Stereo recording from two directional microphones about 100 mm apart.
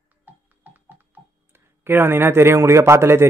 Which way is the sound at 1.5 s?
20° right (ahead or behind).